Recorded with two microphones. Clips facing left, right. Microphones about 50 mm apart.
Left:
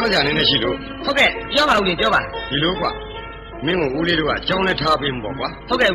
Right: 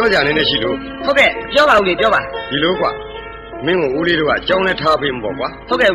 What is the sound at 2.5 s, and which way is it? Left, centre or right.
A man's voice, right.